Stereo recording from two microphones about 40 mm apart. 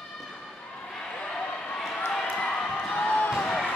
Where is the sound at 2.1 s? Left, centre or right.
Centre.